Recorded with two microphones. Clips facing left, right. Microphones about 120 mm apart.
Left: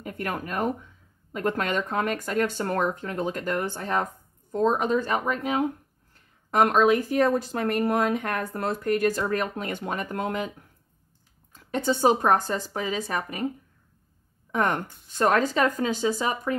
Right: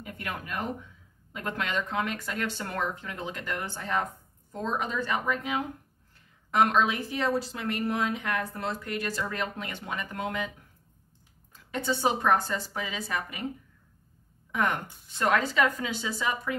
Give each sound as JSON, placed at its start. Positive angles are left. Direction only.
{"t": 0.0, "sound": "speech", "side_deg": 45}
{"t": 11.5, "sound": "speech", "side_deg": 45}
{"t": 14.5, "sound": "speech", "side_deg": 40}